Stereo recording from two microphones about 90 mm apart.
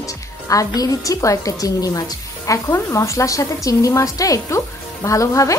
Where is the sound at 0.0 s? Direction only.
40° left (ahead or behind).